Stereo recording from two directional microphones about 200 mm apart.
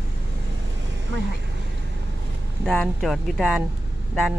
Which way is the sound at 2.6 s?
5° left (ahead or behind).